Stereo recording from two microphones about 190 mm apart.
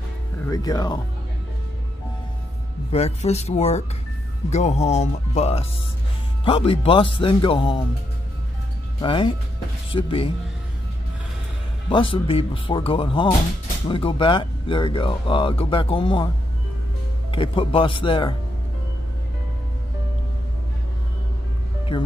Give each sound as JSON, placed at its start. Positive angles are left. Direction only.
{"t": 0.5, "sound": "speech", "side_deg": 20}
{"t": 2.9, "sound": "speech", "side_deg": 35}
{"t": 9.0, "sound": "speech", "side_deg": 25}
{"t": 11.9, "sound": "speech", "side_deg": 25}
{"t": 17.3, "sound": "speech", "side_deg": 25}
{"t": 21.9, "sound": "speech", "side_deg": 25}